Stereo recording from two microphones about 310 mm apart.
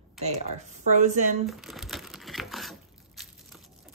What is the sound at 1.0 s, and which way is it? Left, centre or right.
Speech, right.